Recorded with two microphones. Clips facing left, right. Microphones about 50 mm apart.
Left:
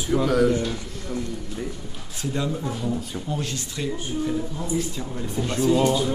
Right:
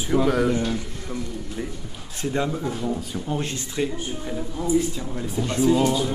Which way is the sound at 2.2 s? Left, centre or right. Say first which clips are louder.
Right 2 dB; right.